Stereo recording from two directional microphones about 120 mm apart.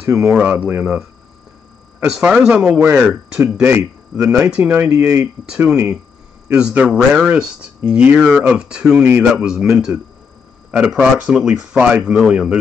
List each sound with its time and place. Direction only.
0.0 s speech: 20° right (ahead or behind)
2.0 s speech: 5° right (ahead or behind)
8.2 s speech: centre (ahead or behind)